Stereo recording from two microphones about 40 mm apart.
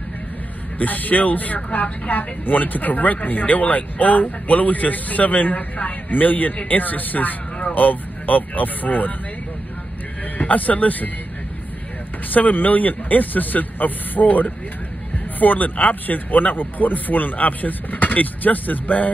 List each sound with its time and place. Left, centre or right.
0.7 s speech: left
10.3 s a man's voice: left
12.3 s speech: left